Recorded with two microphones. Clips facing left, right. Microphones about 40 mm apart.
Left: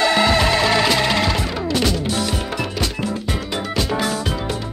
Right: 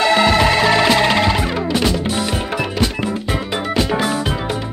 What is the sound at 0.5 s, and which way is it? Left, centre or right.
Music, centre.